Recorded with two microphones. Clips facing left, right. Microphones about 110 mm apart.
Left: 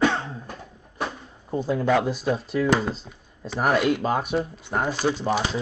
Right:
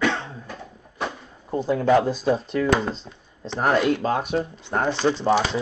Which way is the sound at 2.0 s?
30° right (ahead or behind).